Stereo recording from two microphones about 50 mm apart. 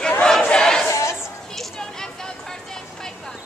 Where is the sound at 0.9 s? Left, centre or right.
Left.